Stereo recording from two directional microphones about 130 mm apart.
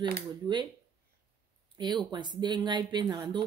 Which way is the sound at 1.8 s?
35° right (ahead or behind).